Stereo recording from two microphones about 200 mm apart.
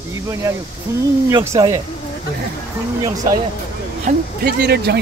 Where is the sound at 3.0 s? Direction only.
20° right (ahead or behind).